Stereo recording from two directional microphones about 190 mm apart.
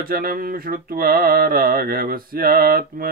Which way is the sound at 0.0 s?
50° right (ahead or behind).